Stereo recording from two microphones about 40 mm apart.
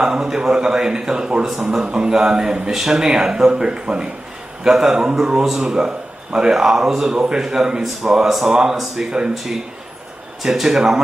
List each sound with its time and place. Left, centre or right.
0.0 s a man's voice: centre
4.6 s a man's voice: centre
8.3 s speech: centre
10.4 s speech: centre